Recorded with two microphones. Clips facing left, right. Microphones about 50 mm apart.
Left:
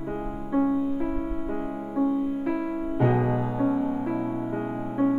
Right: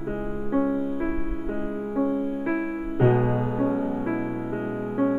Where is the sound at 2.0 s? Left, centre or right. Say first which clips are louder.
Left 1 dB; right.